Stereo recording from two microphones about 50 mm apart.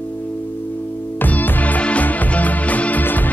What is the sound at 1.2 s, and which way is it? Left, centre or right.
Music, left.